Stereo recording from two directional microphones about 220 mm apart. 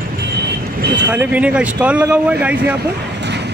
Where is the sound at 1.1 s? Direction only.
5° right (ahead or behind).